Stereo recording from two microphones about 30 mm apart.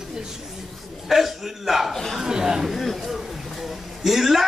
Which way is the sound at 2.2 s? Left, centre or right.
Centre.